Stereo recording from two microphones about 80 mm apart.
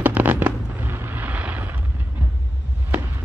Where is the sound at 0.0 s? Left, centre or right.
Right.